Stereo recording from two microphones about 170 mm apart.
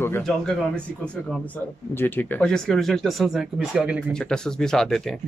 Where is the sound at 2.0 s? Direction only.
10° left (ahead or behind).